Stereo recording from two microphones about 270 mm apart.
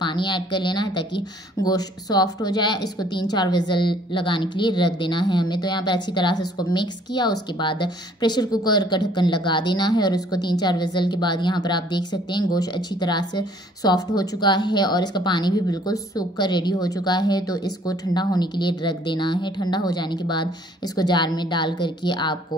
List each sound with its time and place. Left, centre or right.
0.0 s speech: centre